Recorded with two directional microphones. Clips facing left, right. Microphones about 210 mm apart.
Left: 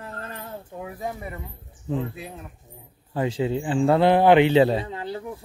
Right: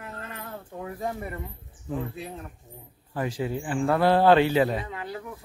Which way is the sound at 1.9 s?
25° left (ahead or behind).